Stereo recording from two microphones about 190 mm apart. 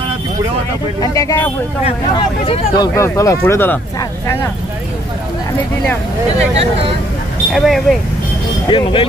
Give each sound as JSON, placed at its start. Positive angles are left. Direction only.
{"t": 1.0, "sound": "speech", "side_deg": 15}
{"t": 2.4, "sound": "speech", "side_deg": 30}
{"t": 3.0, "sound": "speech", "side_deg": 15}
{"t": 7.5, "sound": "speech", "side_deg": 0}
{"t": 8.6, "sound": "speech", "side_deg": 25}